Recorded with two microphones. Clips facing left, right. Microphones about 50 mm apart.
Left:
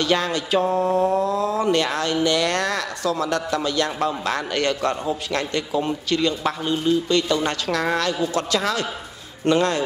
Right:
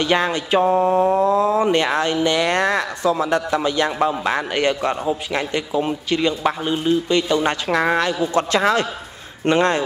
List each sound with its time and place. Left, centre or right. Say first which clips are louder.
0.0 s speech: right 2 dB; right
8.5 s a man's voice: right 5 dB; right